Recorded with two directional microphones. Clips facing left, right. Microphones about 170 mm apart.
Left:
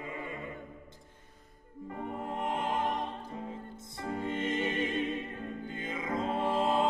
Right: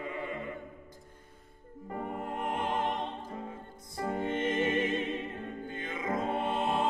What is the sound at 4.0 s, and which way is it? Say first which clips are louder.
Music: right 3 dB; 50° right (ahead or behind).